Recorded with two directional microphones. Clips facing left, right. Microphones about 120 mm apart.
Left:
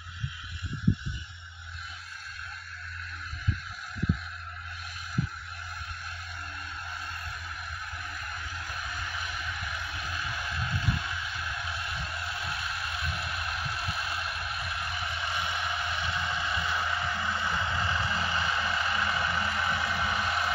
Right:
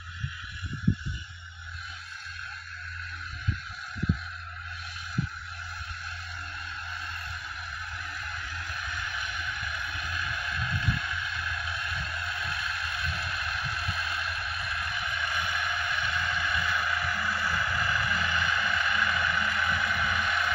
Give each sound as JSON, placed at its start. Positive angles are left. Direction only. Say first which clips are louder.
{"t": 8.9, "sound": "music", "louder": "right 1 dB", "side_deg": 40}